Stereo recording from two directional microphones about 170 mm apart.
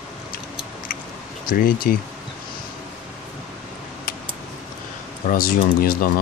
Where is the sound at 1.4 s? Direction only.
60° left (ahead or behind).